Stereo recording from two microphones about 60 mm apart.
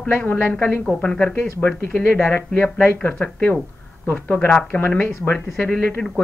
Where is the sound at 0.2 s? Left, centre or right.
Left.